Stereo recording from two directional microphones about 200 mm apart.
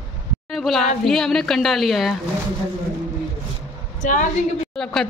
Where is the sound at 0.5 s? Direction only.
Centre (ahead or behind).